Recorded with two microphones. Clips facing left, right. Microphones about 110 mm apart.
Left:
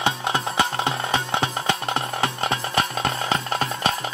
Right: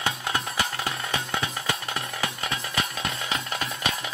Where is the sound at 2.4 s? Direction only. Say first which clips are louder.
Left 7 dB; 35° left (ahead or behind).